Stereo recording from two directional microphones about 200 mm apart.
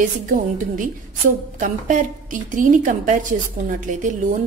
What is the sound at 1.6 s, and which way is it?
Speech, 40° right (ahead or behind).